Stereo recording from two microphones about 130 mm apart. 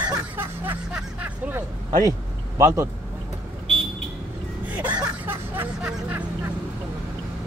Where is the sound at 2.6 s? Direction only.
20° right (ahead or behind).